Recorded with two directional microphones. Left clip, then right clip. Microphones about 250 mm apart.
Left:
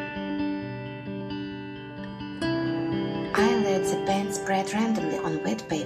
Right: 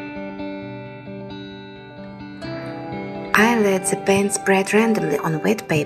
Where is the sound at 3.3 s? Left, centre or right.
Right.